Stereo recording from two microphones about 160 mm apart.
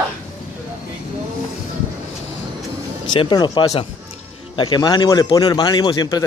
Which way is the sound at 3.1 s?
30° left (ahead or behind).